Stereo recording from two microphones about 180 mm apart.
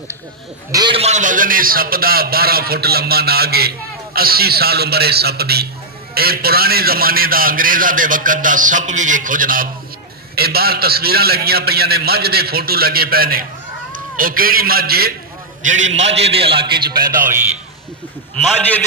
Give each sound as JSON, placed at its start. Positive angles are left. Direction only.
{"t": 0.7, "sound": "a man's voice", "side_deg": -25}
{"t": 15.6, "sound": "a man's voice", "side_deg": -40}
{"t": 16.7, "sound": "a man's voice", "side_deg": -55}